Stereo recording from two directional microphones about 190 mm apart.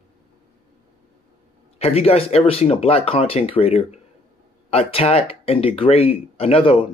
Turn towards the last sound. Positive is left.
turn(degrees=30)  # may be behind; listen again after turning